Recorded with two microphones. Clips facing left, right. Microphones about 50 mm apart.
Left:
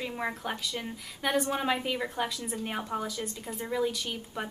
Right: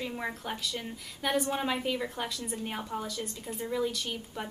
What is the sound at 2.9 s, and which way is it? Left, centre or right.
A woman's voice, centre.